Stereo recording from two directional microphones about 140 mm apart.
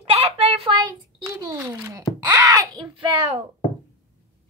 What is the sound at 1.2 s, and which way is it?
A child's voice, 25° right (ahead or behind).